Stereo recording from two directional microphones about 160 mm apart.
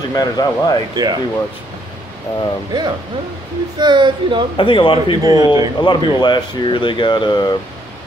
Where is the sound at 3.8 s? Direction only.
30° right (ahead or behind).